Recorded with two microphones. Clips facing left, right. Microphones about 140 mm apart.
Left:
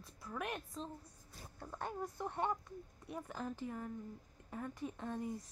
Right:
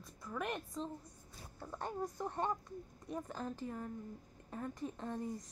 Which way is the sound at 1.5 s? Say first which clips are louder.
Right 2 dB; 10° right (ahead or behind).